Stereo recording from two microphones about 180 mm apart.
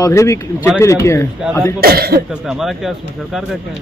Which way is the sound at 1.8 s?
60° right (ahead or behind).